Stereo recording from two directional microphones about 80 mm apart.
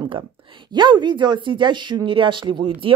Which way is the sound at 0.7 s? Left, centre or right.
Right.